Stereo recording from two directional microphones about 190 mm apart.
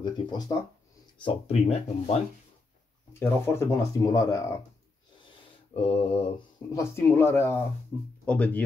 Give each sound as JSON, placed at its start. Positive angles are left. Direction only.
{"t": 0.0, "sound": "mantra", "side_deg": 20}
{"t": 1.2, "sound": "speech", "side_deg": 35}
{"t": 3.1, "sound": "speech", "side_deg": 15}
{"t": 5.7, "sound": "mantra", "side_deg": 30}
{"t": 6.7, "sound": "speech", "side_deg": 15}